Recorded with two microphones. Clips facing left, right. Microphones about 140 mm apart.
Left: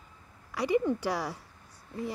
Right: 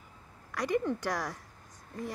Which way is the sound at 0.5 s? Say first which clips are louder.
Left 3 dB; 10° left (ahead or behind).